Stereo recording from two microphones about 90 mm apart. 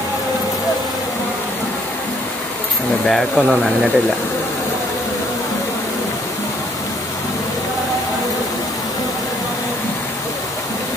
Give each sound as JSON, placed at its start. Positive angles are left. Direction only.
{"t": 3.1, "sound": "speech", "side_deg": 0}